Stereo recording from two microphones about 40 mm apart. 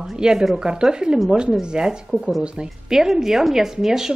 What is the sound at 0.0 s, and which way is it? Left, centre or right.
A woman's voice, centre.